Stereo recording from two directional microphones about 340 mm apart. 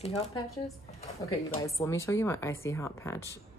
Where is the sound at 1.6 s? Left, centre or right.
Centre.